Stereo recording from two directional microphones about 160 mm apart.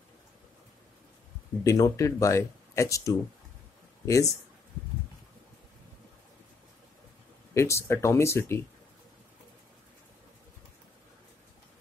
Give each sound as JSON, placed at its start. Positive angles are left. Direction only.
{"t": 1.6, "sound": "speech", "side_deg": 20}
{"t": 7.5, "sound": "speech", "side_deg": 15}